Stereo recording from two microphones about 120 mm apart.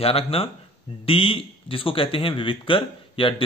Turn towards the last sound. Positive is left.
turn(degrees=45)  # may be behind; listen again after turning